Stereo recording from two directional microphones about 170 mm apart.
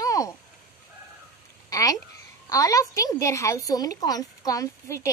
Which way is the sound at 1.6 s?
20° left (ahead or behind).